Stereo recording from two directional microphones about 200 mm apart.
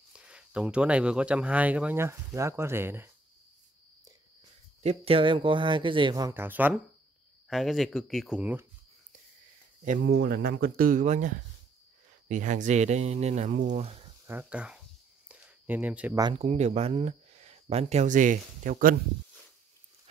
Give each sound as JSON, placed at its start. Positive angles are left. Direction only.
{"t": 0.1, "sound": "speech", "side_deg": -5}
{"t": 4.8, "sound": "speech", "side_deg": -30}
{"t": 9.8, "sound": "speech", "side_deg": -50}
{"t": 14.2, "sound": "speech", "side_deg": -10}
{"t": 15.2, "sound": "a sound", "side_deg": -5}
{"t": 16.2, "sound": "speech", "side_deg": -20}
{"t": 16.4, "sound": "speech", "side_deg": -35}